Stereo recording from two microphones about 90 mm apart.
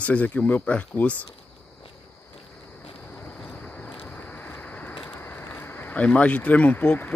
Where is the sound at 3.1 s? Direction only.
15° left (ahead or behind).